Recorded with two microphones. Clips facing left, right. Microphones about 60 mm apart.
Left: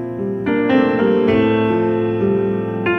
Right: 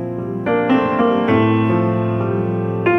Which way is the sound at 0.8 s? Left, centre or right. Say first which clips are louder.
Left 1 dB; right.